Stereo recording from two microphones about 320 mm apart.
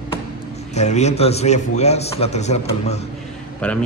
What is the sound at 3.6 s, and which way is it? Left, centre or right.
Speech, centre.